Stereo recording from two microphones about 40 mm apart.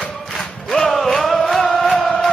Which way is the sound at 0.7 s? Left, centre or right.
Centre.